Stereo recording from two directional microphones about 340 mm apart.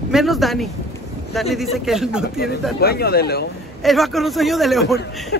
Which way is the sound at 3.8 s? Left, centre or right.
Centre.